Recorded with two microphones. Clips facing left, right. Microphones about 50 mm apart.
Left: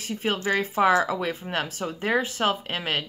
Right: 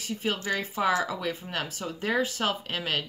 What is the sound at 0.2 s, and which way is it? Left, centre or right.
Speech, left.